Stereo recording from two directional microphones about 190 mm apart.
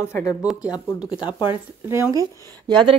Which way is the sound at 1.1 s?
20° left (ahead or behind).